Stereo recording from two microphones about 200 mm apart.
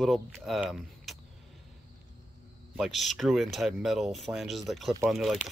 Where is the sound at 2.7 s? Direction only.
Centre (ahead or behind).